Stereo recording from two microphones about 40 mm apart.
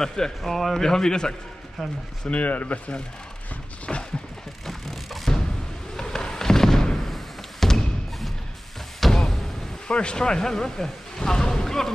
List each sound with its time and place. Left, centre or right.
0.0 s a man's voice: centre
0.8 s a man's voice: centre
1.8 s speech: centre
2.2 s speech: left
3.9 s a sound: centre
4.6 s a sound: centre
5.9 s fireworks: centre
7.1 s a sound: centre
9.8 s speech: left; by 11.9 s centre